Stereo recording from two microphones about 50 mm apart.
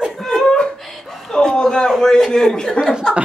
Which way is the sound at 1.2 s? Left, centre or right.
Centre.